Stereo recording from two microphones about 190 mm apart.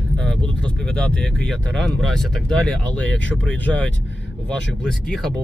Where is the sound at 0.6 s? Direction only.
5° left (ahead or behind).